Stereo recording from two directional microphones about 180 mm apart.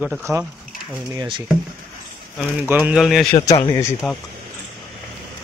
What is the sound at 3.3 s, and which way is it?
Speech, 30° left (ahead or behind).